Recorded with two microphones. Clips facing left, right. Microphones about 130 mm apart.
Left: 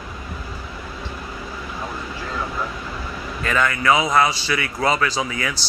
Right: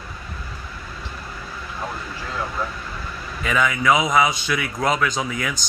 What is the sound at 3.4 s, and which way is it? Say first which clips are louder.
Speech: even; 5° right (ahead or behind).